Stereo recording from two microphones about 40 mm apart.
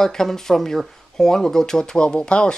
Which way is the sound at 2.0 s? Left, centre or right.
Left.